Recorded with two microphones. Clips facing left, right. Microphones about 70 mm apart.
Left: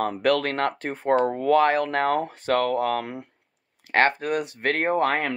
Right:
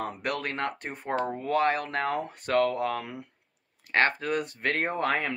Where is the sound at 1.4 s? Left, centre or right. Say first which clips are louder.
Left 6 dB; left.